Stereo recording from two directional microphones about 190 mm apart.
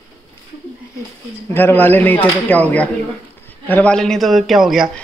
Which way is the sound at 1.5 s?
10° left (ahead or behind).